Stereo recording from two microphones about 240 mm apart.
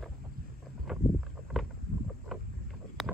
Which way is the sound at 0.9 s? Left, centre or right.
Centre.